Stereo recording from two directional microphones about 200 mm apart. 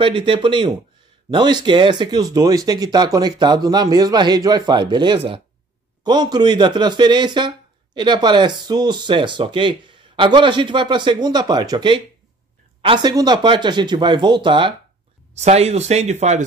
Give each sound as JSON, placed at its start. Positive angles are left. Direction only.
{"t": 0.0, "sound": "speech", "side_deg": -25}